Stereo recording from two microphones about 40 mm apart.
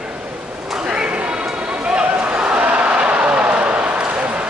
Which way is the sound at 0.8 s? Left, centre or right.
Right.